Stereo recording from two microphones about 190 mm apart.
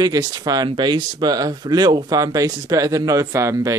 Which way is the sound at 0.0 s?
20° right (ahead or behind).